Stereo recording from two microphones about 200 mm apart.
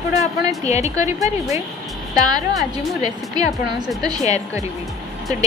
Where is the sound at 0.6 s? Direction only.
35° left (ahead or behind).